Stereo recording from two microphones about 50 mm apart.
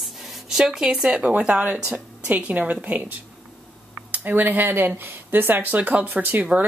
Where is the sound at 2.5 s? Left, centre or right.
Right.